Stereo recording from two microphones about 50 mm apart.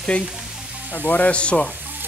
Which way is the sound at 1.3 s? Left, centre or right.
Left.